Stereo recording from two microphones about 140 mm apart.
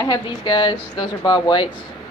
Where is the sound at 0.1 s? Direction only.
30° left (ahead or behind).